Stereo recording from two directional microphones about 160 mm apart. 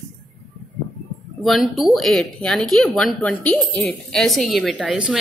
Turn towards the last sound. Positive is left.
turn(degrees=0)  # may be behind; listen again after turning